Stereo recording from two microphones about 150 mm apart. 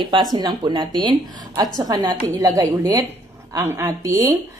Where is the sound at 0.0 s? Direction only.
30° right (ahead or behind).